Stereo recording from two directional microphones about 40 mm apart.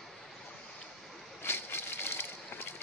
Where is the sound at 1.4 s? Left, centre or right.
Left.